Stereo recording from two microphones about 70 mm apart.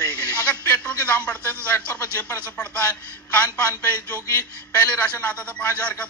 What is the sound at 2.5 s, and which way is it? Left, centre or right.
Speech, centre.